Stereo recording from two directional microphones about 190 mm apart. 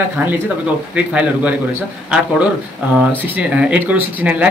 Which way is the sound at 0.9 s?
5° right (ahead or behind).